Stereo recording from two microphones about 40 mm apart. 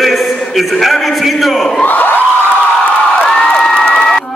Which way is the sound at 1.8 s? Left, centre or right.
Left.